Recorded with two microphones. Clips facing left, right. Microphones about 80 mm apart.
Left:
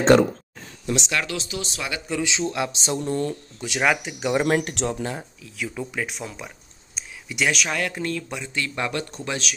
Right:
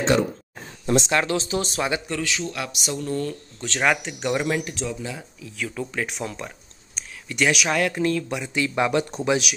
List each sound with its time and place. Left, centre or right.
0.1 s speech: left
0.8 s speech: right
2.2 s speech: left
3.5 s speech: centre
4.5 s speech: left
5.4 s speech: centre
8.5 s speech: centre